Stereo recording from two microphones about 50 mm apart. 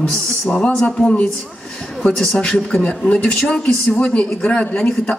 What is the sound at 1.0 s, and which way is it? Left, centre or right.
Speech, left.